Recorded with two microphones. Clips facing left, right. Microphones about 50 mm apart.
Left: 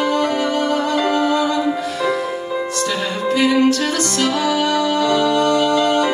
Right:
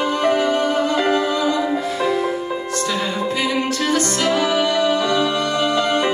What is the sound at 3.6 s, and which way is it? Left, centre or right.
Music, right.